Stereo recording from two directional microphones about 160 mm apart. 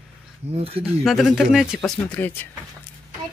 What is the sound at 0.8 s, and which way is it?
Speech, centre (ahead or behind).